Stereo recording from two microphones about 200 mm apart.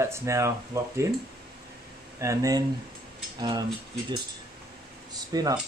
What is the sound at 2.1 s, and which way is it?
Speech, 15° right (ahead or behind).